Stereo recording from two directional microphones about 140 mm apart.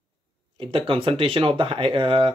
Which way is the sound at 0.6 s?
40° right (ahead or behind).